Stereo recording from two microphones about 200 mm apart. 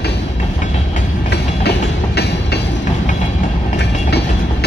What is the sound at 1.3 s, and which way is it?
Train, 55° left (ahead or behind).